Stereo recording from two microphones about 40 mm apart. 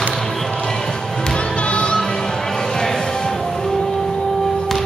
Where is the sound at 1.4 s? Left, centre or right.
Left.